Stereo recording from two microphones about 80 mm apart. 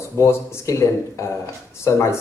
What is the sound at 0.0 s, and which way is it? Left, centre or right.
Speech, left.